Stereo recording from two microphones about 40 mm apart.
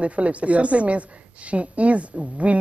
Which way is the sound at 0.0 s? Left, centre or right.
Right.